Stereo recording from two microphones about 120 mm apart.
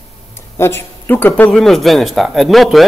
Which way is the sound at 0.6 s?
20° left (ahead or behind).